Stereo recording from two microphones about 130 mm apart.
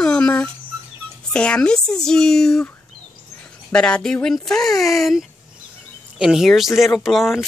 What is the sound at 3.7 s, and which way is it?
Speech, 5° left (ahead or behind).